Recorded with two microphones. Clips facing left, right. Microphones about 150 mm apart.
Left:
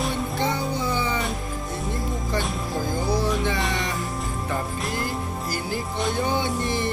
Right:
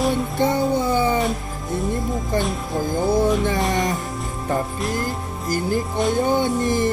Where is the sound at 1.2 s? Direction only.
Centre (ahead or behind).